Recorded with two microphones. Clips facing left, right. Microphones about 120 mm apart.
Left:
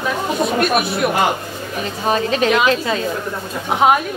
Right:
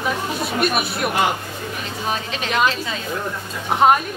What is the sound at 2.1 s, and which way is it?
Speech, 45° left (ahead or behind).